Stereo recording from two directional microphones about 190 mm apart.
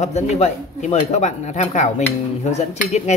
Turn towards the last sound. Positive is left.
turn(degrees=35)  # may be behind; listen again after turning